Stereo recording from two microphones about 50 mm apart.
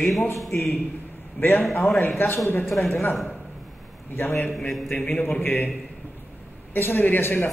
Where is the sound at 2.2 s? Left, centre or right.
Left.